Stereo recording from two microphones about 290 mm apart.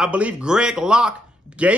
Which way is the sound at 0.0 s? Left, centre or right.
Centre.